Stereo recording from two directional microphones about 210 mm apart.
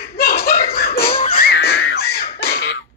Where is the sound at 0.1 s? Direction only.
45° left (ahead or behind).